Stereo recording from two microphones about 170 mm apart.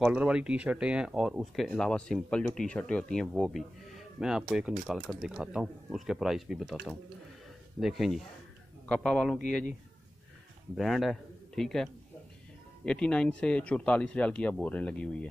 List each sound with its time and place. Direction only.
0.0 s speech: 5° right (ahead or behind)
7.8 s speech: centre (ahead or behind)
10.8 s a man's voice: centre (ahead or behind)